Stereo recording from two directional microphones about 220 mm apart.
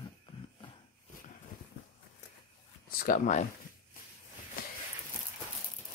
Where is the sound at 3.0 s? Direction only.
35° left (ahead or behind).